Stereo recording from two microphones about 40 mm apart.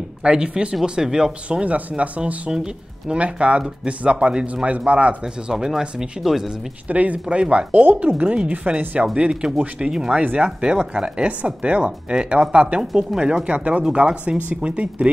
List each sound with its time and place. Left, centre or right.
0.2 s speech: right
1.6 s speech: right
2.5 s speech: centre
3.2 s speech: right
4.6 s speech: right
5.2 s speech: centre
6.9 s speech: right
8.5 s speech: right
9.0 s speech: right
10.1 s speech: right
13.5 s speech: right
13.8 s speech: right